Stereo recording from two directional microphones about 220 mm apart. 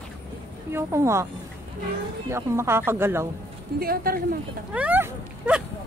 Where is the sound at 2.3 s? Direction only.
10° right (ahead or behind).